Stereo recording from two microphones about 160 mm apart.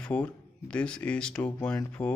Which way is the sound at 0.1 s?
10° left (ahead or behind).